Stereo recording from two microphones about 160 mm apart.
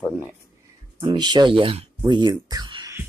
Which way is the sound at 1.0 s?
25° right (ahead or behind).